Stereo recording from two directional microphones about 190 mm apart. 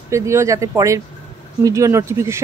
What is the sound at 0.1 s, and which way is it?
Speech, 15° right (ahead or behind).